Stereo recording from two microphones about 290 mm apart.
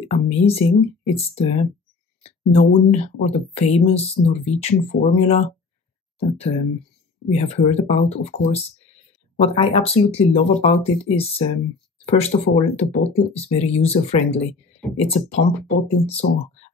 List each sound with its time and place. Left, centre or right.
0.1 s speech: left